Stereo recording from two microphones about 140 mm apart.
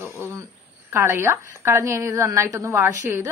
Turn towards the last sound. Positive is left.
turn(degrees=-20)  # may be behind; listen again after turning